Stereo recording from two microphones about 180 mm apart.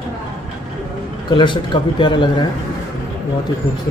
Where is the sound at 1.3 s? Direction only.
25° left (ahead or behind).